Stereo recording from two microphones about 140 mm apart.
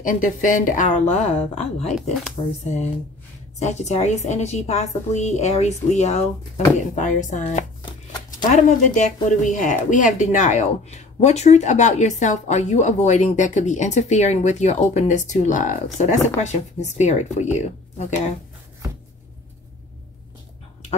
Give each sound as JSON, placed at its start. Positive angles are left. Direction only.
{"t": 0.0, "sound": "a woman's voice", "side_deg": 75}